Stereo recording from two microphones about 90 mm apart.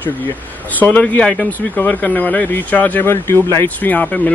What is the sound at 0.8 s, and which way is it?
Speech, 15° left (ahead or behind).